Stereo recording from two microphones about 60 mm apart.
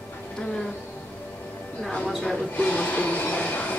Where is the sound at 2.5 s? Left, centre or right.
Left.